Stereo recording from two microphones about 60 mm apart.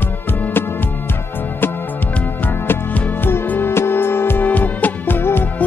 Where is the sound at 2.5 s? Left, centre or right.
Left.